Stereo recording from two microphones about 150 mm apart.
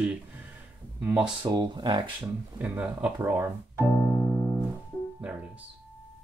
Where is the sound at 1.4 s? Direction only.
30° right (ahead or behind).